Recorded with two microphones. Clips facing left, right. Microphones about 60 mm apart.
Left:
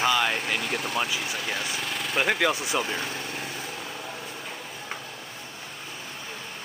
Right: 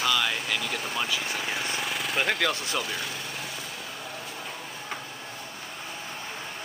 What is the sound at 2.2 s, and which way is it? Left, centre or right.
Speech, centre.